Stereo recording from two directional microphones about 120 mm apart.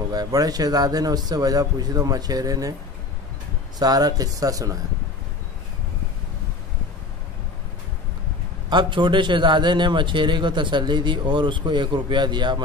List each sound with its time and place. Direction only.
0.1 s a man's voice: 35° right (ahead or behind)
3.8 s a man's voice: 30° right (ahead or behind)
8.6 s a man's voice: 40° right (ahead or behind)